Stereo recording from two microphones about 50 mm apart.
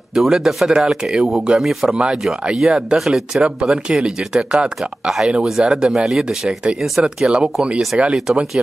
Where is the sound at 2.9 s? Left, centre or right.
Centre.